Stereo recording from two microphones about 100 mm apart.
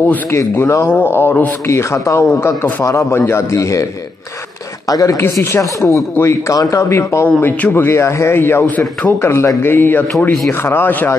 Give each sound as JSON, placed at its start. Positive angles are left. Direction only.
{"t": 0.0, "sound": "speech", "side_deg": 15}
{"t": 0.4, "sound": "a man's voice", "side_deg": 30}
{"t": 1.7, "sound": "a man's voice", "side_deg": 30}
{"t": 4.8, "sound": "a woman's voice", "side_deg": 35}
{"t": 7.2, "sound": "a man's voice", "side_deg": 15}